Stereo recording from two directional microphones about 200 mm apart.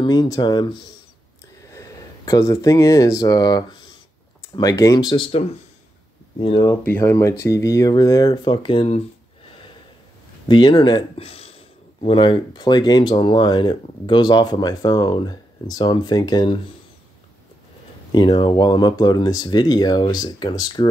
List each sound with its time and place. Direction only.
0.0 s speech: 20° left (ahead or behind)
1.7 s speech: 15° left (ahead or behind)
6.4 s speech: 20° left (ahead or behind)
10.5 s speech: 20° left (ahead or behind)
18.1 s speech: 20° left (ahead or behind)